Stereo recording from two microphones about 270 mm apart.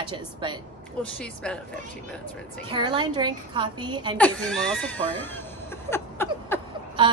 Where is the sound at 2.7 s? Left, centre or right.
Centre.